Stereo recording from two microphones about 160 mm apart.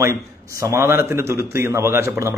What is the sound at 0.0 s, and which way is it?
A man's voice, 20° right (ahead or behind).